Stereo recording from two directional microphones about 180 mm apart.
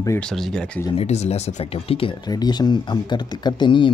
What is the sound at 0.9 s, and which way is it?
Speech, 35° left (ahead or behind).